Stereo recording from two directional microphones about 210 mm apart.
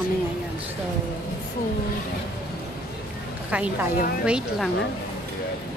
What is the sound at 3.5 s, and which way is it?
A woman's voice, 5° right (ahead or behind).